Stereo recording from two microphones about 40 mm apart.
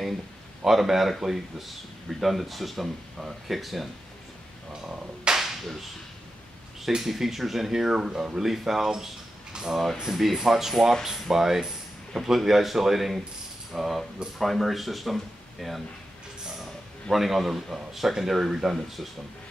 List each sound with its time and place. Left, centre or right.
0.7 s speech: centre
4.8 s music: right
7.0 s speech: centre
17.1 s speech: centre